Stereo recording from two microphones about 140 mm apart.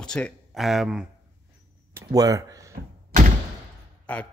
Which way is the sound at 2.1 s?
25° right (ahead or behind).